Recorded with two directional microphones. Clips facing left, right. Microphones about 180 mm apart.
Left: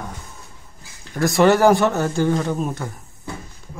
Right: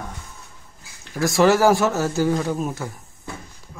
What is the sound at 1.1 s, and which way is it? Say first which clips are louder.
A man's voice: left 1 dB; centre (ahead or behind).